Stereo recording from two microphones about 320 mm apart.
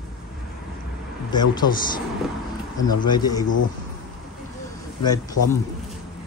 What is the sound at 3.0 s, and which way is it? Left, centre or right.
Speech, centre.